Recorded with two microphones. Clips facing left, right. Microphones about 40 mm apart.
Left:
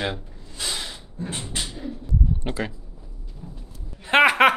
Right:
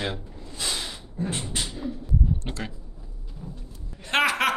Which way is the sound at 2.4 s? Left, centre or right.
Centre.